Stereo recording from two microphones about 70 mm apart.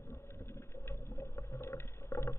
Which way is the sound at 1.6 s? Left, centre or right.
Left.